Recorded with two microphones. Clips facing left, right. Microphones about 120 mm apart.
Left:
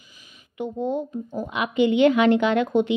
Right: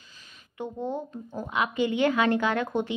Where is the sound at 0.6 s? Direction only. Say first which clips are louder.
Left 6 dB; 15° left (ahead or behind).